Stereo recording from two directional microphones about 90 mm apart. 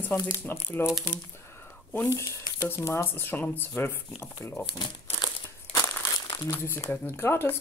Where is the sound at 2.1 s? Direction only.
35° left (ahead or behind).